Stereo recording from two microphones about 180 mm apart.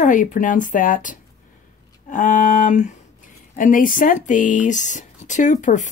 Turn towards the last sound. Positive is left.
turn(degrees=45)  # may be behind; listen again after turning